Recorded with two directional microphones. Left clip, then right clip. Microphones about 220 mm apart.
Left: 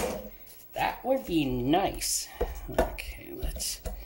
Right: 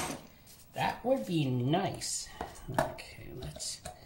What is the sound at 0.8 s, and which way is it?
Speech, 25° left (ahead or behind).